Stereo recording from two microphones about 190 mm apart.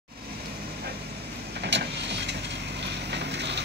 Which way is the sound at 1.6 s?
60° right (ahead or behind).